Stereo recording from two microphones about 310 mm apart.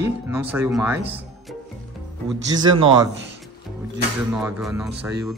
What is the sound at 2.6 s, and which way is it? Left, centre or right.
Speech, centre.